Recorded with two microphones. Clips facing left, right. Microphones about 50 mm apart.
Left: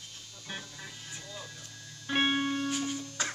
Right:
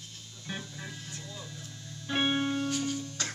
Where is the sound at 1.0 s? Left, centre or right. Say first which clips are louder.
Right 1 dB; centre.